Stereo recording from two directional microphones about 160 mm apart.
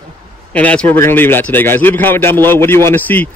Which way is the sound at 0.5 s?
10° left (ahead or behind).